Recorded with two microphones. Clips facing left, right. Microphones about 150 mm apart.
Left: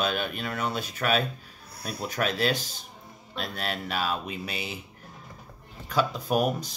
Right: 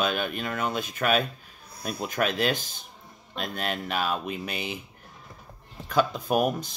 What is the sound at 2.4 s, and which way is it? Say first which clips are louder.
Speech: even; 50° right (ahead or behind).